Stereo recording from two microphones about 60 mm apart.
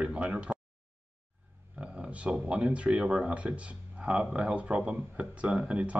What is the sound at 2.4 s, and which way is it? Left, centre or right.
Speech, centre.